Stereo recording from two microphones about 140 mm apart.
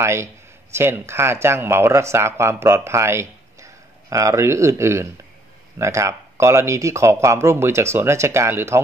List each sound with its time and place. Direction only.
0.0 s speech: 20° right (ahead or behind)